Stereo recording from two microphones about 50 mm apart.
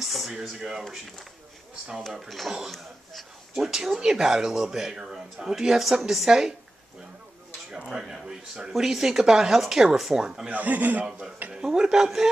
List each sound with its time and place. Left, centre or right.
0.0 s a sound: centre
0.6 s speech: centre
2.1 s speech: centre
3.5 s speech: centre
7.9 s speech: centre
10.5 s a man's voice: right
11.1 s speech: centre